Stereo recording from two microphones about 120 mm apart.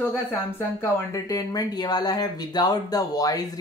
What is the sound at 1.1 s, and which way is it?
Speech, 30° left (ahead or behind).